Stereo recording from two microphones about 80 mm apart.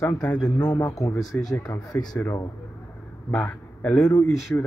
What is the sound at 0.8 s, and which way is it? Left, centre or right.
Speech, left.